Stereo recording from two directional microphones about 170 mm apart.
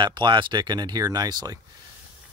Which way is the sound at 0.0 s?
25° right (ahead or behind).